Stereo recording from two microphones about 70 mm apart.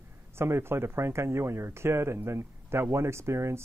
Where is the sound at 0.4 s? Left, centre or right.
Right.